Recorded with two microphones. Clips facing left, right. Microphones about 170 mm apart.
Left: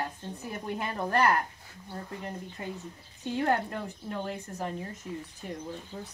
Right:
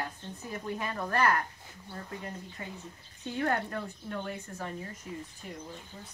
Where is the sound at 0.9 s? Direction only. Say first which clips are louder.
Left 4 dB; 25° left (ahead or behind).